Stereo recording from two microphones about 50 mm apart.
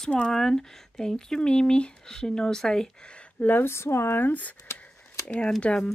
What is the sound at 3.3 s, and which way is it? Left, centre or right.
Speech, left.